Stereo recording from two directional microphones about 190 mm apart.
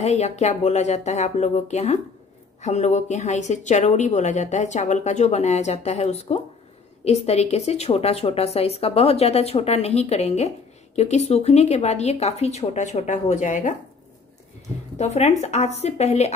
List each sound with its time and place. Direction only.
0.0 s a woman's voice: 35° left (ahead or behind)
15.0 s a woman's voice: 35° left (ahead or behind)